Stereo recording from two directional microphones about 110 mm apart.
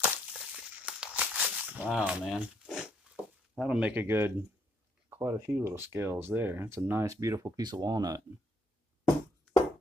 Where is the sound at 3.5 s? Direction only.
5° right (ahead or behind); by 7.6 s 30° right (ahead or behind).